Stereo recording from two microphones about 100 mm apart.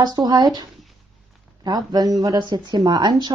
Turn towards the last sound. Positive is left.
turn(degrees=-45)  # may be behind; listen again after turning